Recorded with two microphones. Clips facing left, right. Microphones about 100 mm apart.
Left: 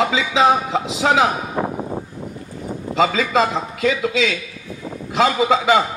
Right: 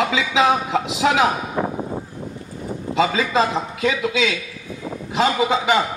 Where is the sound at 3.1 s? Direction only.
35° right (ahead or behind).